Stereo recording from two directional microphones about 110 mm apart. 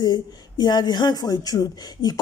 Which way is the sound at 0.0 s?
40° left (ahead or behind).